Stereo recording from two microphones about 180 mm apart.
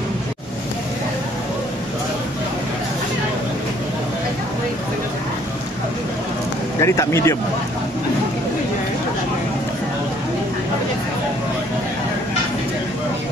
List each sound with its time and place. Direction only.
6.8 s speech: 15° left (ahead or behind)